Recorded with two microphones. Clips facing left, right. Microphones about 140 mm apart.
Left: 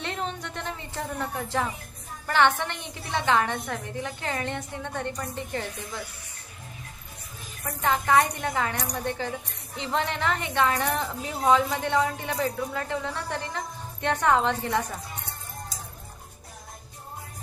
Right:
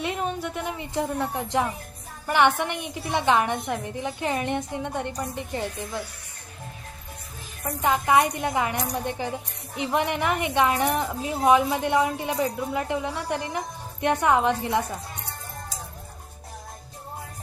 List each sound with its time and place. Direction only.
0.0 s a sound: 10° right (ahead or behind)
2.2 s a woman's voice: 15° right (ahead or behind)
7.8 s a woman's voice: 15° right (ahead or behind)